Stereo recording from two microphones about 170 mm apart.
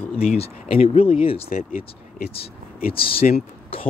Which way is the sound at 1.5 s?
55° left (ahead or behind).